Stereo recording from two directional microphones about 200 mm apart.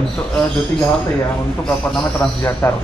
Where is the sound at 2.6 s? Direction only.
15° left (ahead or behind).